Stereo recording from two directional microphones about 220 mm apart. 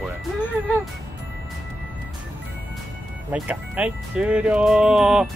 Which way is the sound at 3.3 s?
5° right (ahead or behind).